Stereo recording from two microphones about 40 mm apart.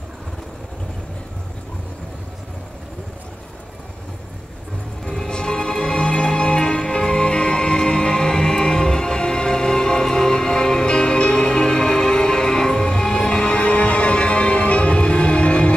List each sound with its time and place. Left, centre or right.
5.0 s music: centre